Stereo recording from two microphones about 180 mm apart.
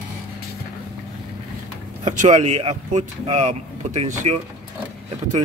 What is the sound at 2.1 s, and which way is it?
Speech, 40° right (ahead or behind).